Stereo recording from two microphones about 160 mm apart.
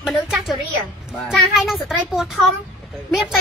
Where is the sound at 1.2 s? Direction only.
Centre (ahead or behind).